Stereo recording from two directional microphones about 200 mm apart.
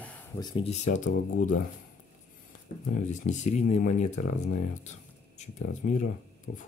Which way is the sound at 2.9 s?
35° left (ahead or behind).